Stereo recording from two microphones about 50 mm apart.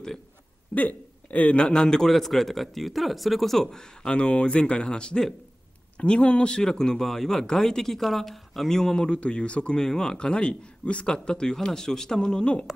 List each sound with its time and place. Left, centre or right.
0.7 s a man's voice: left